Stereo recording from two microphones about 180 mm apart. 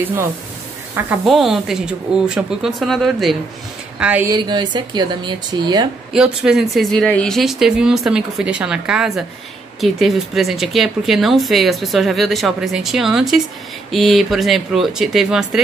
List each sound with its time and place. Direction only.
0.0 s speech: 10° right (ahead or behind)
1.2 s speech: centre (ahead or behind)
4.3 s speech: 25° right (ahead or behind)
6.1 s speech: 5° right (ahead or behind)